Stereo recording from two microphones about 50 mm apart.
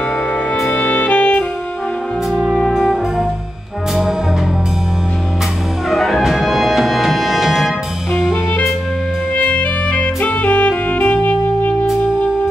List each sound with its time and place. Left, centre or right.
0.7 s music: left
2.7 s brass instrument: centre
5.9 s music: centre
9.5 s saxophone: left